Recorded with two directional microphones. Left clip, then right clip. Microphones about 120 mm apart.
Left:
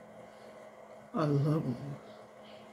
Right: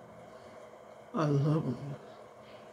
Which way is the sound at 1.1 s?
15° right (ahead or behind).